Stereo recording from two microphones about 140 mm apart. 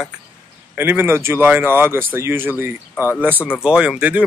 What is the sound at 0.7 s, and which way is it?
Speech, 15° right (ahead or behind).